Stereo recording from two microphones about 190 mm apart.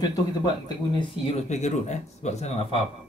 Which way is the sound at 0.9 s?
30° left (ahead or behind).